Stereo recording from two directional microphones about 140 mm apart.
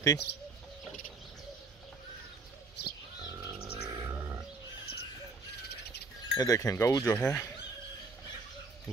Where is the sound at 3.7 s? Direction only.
35° right (ahead or behind).